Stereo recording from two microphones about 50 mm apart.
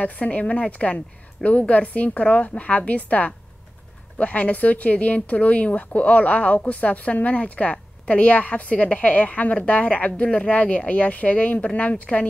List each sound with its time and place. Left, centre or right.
0.0 s a woman's voice: left